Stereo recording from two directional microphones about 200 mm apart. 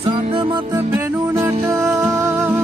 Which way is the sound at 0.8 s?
10° right (ahead or behind).